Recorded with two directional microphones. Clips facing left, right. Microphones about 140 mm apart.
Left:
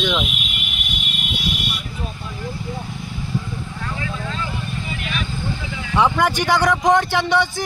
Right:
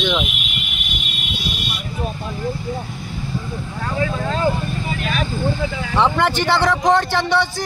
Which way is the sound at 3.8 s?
45° right (ahead or behind).